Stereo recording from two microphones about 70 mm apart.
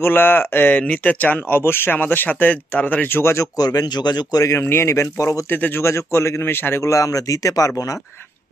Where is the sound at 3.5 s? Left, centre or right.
Left.